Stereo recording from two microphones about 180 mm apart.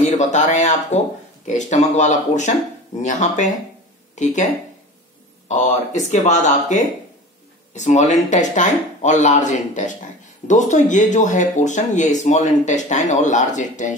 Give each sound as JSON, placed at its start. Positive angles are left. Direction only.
{"t": 0.0, "sound": "speech", "side_deg": 40}
{"t": 5.5, "sound": "speech", "side_deg": 40}